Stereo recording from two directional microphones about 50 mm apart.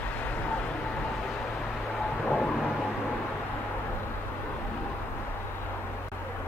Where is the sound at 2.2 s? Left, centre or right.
Left.